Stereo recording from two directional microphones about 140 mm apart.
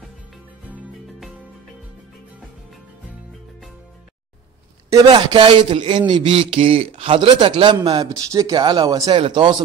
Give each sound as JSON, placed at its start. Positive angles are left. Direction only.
{"t": 5.1, "sound": "speech", "side_deg": -35}